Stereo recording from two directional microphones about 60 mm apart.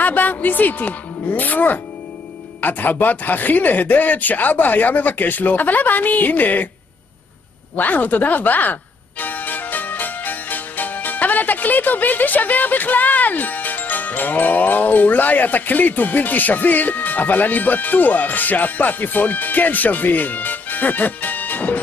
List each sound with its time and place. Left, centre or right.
0.0 s speech: left
7.7 s speech: left
9.2 s music: left